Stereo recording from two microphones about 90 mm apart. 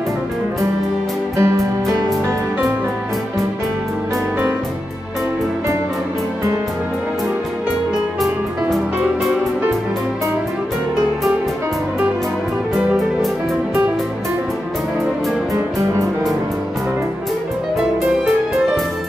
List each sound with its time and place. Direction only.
1.4 s music: 35° right (ahead or behind)
8.2 s music: centre (ahead or behind)
12.7 s music: centre (ahead or behind)
15.5 s music: 35° right (ahead or behind)
17.7 s music: centre (ahead or behind)